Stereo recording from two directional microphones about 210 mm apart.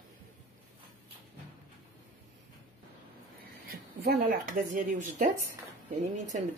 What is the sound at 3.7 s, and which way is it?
Speech, 50° right (ahead or behind).